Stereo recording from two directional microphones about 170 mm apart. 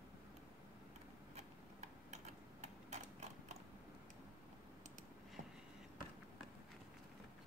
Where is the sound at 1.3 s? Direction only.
40° right (ahead or behind).